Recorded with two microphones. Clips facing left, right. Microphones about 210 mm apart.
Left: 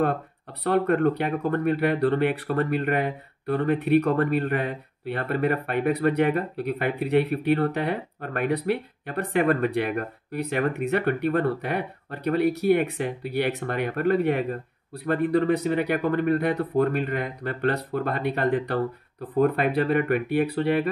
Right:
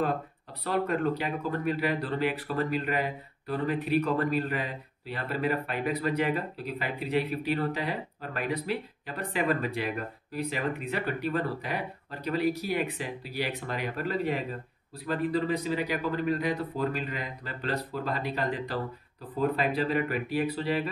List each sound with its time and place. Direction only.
0.7 s speech: 55° left (ahead or behind)